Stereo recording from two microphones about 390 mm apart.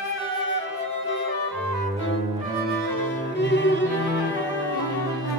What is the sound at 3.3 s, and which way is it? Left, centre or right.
Music, left.